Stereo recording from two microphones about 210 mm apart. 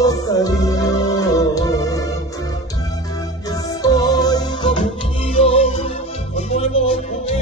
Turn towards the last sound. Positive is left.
turn(degrees=30)  # may be behind; listen again after turning